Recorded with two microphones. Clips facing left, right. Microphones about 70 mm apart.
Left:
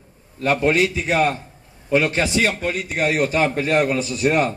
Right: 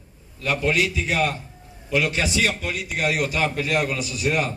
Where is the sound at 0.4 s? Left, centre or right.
Left.